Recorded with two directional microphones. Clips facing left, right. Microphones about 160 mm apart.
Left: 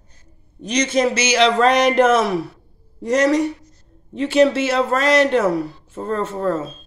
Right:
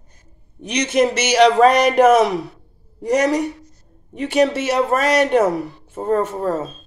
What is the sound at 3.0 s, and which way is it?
Speech, 15° right (ahead or behind).